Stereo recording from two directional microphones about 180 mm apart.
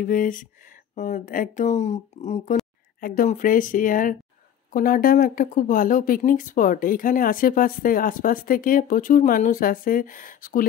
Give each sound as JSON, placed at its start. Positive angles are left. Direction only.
{"t": 0.0, "sound": "speech", "side_deg": 50}
{"t": 3.0, "sound": "speech", "side_deg": 50}